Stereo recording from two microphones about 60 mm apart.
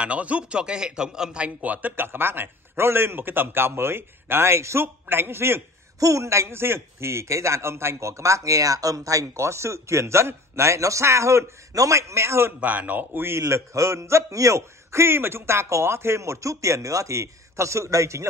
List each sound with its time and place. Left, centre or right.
0.0 s a man's voice: right
4.8 s a man's voice: right
5.9 s a man's voice: right
12.5 s speech: right
13.4 s a man's voice: right